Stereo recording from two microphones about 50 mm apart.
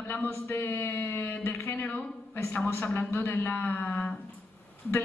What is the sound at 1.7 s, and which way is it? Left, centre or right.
Speech, left.